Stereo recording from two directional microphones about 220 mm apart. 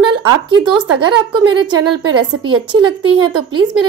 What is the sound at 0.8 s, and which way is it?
Speech, 90° right.